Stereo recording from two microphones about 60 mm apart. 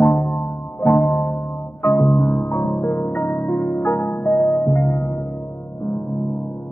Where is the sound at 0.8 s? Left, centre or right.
Left.